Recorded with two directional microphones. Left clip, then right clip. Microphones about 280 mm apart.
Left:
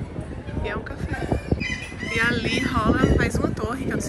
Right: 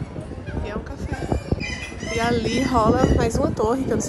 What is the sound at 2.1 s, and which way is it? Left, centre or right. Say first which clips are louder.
Speech: even; centre.